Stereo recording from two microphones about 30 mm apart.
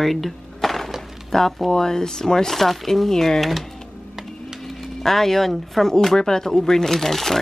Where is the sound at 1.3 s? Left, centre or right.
Left.